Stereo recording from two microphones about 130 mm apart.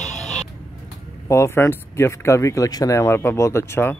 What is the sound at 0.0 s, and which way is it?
Vehicle, 65° left (ahead or behind).